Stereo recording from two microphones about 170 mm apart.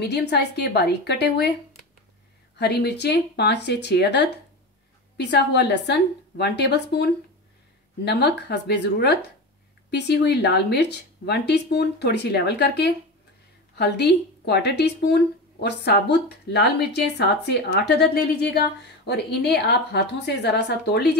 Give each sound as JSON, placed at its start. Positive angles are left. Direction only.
{"t": 0.1, "sound": "a woman's voice", "side_deg": 75}
{"t": 2.6, "sound": "a woman's voice", "side_deg": 75}